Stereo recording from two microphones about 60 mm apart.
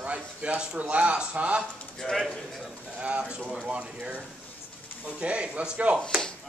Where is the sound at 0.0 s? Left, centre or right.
Right.